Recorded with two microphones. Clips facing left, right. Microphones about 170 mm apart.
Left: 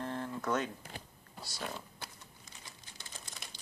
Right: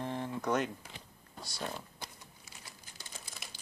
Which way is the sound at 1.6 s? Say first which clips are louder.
Right 2 dB; centre (ahead or behind).